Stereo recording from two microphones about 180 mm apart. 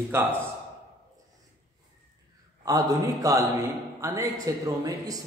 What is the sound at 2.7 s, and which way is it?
A man's voice, 20° right (ahead or behind).